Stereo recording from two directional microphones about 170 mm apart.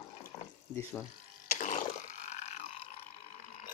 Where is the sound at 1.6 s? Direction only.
45° left (ahead or behind).